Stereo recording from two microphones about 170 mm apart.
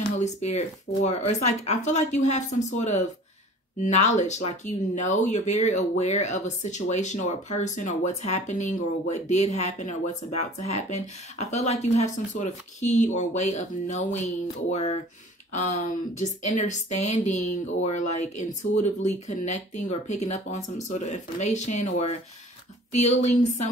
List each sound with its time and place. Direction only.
0.2 s speech: 40° left (ahead or behind)